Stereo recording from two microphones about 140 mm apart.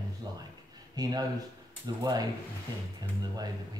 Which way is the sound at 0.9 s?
30° right (ahead or behind).